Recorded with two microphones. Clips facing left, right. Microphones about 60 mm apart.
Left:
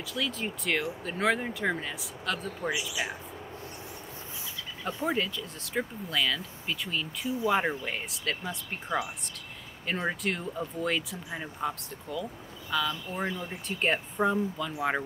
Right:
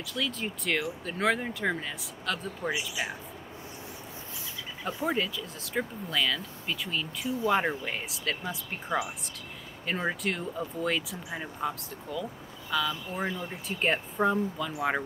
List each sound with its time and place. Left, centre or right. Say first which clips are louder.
0.1 s speech: even; centre
4.8 s speech: even; centre